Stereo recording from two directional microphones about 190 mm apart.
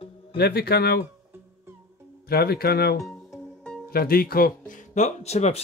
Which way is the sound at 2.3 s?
55° left (ahead or behind).